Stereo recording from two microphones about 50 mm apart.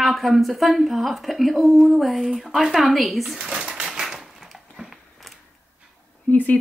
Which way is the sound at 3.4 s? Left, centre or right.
Centre.